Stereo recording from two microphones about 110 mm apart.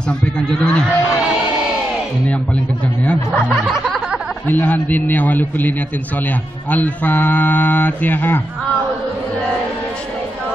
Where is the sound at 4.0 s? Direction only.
10° right (ahead or behind).